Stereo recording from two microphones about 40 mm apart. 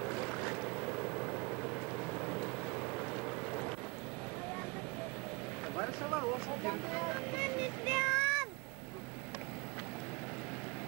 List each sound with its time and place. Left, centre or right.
0.0 s vehicle: centre
5.8 s speech: right